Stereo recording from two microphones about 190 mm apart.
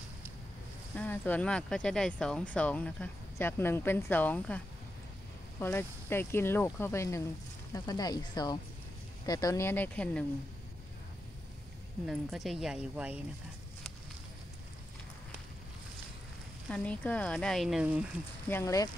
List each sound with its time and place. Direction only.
0.9 s speech: 10° left (ahead or behind)
5.6 s speech: 10° left (ahead or behind)
12.1 s speech: centre (ahead or behind)
16.6 s speech: 5° left (ahead or behind)
18.5 s speech: 15° left (ahead or behind)